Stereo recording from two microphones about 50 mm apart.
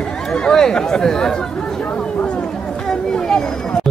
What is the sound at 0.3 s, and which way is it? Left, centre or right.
Speech, centre.